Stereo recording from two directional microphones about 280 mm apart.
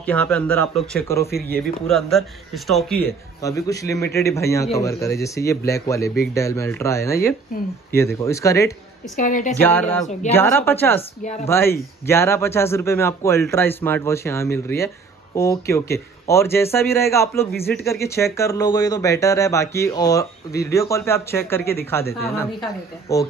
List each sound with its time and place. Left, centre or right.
0.0 s a man's voice: centre
9.1 s a woman's voice: left
9.6 s speech: centre